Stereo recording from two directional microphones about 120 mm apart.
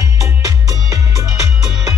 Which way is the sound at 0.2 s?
25° right (ahead or behind).